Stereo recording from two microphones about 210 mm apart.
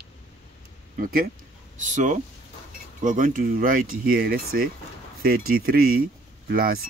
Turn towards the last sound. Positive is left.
turn(degrees=-45)  # may be behind; listen again after turning